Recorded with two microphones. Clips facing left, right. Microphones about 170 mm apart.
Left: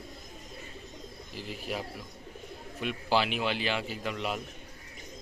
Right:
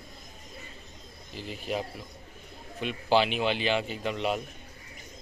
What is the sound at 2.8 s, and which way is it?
Speech, 5° left (ahead or behind).